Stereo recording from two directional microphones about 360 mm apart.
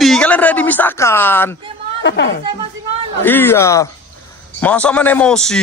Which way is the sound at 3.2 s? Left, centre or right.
Centre.